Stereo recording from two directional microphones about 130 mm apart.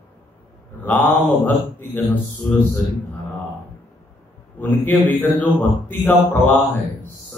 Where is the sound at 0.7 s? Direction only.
15° left (ahead or behind).